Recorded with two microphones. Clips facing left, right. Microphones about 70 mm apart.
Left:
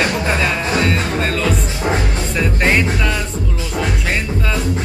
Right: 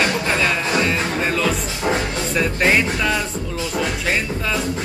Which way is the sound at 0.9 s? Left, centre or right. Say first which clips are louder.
Left 2 dB; centre.